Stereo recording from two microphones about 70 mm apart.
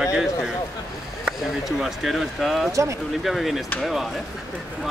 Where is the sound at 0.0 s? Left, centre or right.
Centre.